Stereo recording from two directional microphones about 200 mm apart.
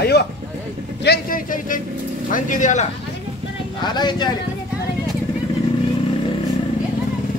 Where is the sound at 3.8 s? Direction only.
20° left (ahead or behind).